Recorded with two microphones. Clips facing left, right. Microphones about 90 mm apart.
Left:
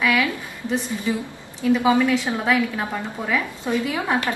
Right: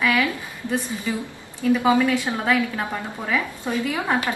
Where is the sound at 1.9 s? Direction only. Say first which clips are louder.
Even; 5° right (ahead or behind).